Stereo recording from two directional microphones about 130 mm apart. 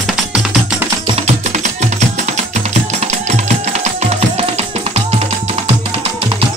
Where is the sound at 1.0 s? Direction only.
55° right (ahead or behind).